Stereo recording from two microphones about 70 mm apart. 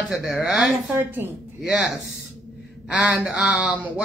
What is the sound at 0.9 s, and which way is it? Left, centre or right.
Speech, right.